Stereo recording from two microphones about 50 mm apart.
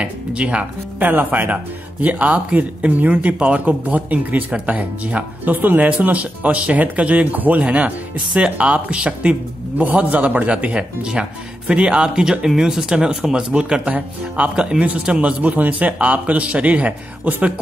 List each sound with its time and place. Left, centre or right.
0.0 s a man's voice: right
1.0 s a man's voice: right
10.7 s a man's voice: centre